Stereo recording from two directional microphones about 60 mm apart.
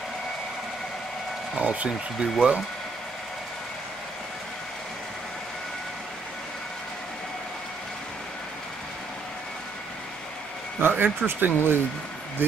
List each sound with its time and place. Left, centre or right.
1.6 s speech: centre
10.8 s speech: right